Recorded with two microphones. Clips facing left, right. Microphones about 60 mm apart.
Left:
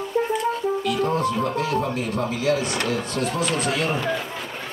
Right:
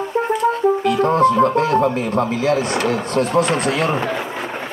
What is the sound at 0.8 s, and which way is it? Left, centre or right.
Speech, right.